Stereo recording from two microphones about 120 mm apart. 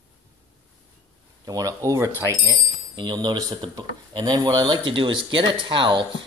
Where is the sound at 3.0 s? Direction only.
35° right (ahead or behind).